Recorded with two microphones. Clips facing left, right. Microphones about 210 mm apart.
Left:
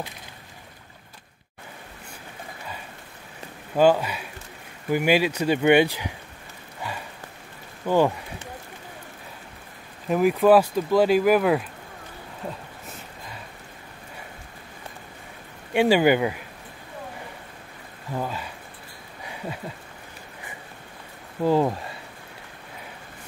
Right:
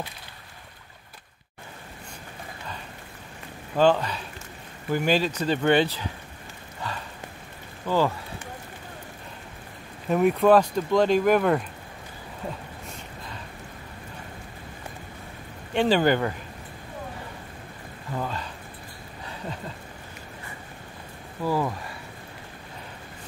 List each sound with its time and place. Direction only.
3.7 s speech: 10° left (ahead or behind)
7.8 s speech: 20° left (ahead or behind)
10.0 s speech: centre (ahead or behind)
15.7 s speech: 10° left (ahead or behind)
18.1 s speech: 10° left (ahead or behind)
19.2 s a sound: 10° left (ahead or behind)
21.5 s speech: 25° left (ahead or behind)